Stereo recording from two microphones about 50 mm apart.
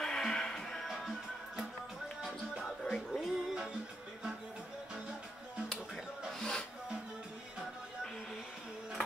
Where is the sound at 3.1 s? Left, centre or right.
Centre.